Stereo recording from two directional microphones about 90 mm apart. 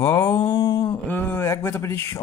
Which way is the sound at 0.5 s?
60° left (ahead or behind).